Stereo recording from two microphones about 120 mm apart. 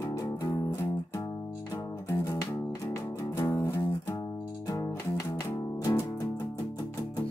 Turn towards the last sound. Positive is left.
turn(degrees=25)  # may be behind; listen again after turning